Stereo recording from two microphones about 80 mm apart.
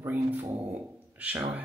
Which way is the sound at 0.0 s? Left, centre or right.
Right.